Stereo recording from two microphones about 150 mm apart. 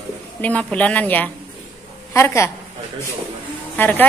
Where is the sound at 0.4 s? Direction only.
10° left (ahead or behind).